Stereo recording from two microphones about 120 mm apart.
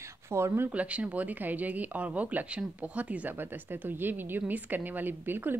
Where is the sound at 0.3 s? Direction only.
20° right (ahead or behind).